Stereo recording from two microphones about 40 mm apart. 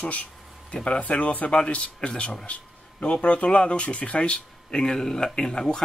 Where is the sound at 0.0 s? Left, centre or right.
Left.